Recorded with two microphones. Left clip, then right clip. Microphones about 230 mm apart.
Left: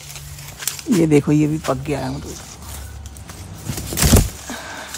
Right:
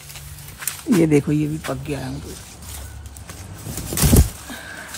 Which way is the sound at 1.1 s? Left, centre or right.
Centre.